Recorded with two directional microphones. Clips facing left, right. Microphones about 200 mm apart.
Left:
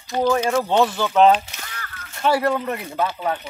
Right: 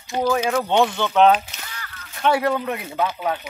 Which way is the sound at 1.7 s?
50° left (ahead or behind).